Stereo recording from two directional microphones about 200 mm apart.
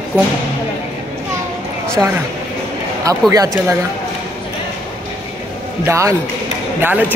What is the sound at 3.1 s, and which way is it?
Speech, 15° right (ahead or behind).